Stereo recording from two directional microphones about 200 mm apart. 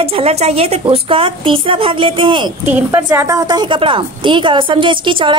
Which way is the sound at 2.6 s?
10° right (ahead or behind).